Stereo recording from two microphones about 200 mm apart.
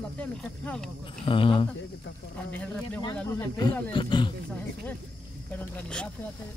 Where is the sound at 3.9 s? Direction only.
25° left (ahead or behind).